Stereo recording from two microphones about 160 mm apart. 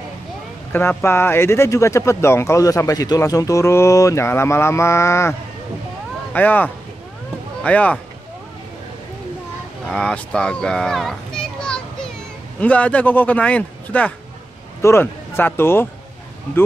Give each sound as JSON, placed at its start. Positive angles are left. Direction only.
{"t": 0.7, "sound": "speech", "side_deg": 15}
{"t": 6.3, "sound": "speech", "side_deg": 10}
{"t": 9.8, "sound": "a child's voice", "side_deg": 5}